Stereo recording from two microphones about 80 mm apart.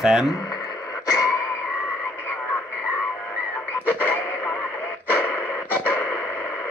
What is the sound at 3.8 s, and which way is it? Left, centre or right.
Radio, left.